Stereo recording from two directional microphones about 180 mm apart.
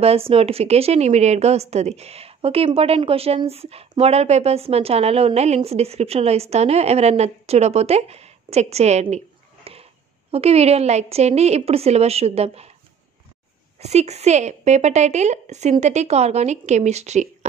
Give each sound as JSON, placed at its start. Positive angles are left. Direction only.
{"t": 0.0, "sound": "a woman's voice", "side_deg": -35}
{"t": 9.7, "sound": "a sound", "side_deg": -30}
{"t": 10.3, "sound": "a woman's voice", "side_deg": -35}
{"t": 13.7, "sound": "a woman's voice", "side_deg": -35}